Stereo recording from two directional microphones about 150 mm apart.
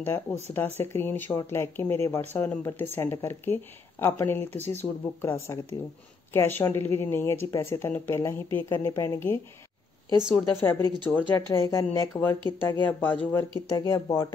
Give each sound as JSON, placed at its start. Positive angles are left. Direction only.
{"t": 0.0, "sound": "speech", "side_deg": 15}